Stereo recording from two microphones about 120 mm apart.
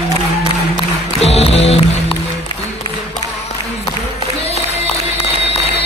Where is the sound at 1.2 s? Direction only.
60° left (ahead or behind).